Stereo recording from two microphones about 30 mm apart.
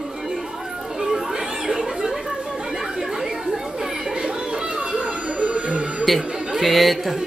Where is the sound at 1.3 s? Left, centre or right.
Centre; by 6.1 s right.